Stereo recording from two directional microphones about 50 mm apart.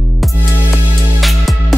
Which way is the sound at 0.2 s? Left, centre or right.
Centre.